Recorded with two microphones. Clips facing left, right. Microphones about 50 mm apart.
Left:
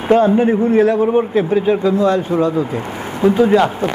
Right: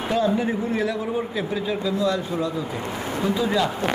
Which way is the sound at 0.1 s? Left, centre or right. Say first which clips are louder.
Left 11 dB; left.